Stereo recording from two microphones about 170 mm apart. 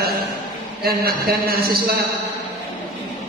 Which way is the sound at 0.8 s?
65° right (ahead or behind).